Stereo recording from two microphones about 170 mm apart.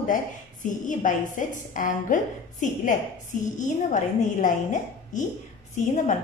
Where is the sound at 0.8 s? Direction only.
50° left (ahead or behind).